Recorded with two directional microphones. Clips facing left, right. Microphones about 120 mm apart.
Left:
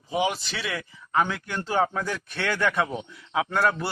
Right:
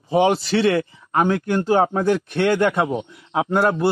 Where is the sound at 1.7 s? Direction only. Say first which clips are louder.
Right 7 dB; 20° right (ahead or behind).